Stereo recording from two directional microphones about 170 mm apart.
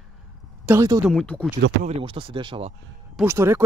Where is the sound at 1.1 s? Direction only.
5° left (ahead or behind).